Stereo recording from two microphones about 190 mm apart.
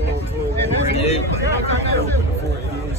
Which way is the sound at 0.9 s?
30° left (ahead or behind).